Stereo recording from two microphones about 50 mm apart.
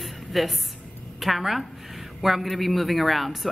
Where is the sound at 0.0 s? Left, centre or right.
Centre.